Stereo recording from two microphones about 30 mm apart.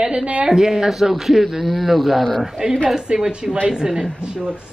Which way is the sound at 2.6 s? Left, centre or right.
Right.